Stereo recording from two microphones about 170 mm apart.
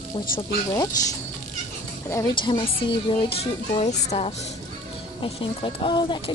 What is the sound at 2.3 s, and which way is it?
Speech, 30° left (ahead or behind).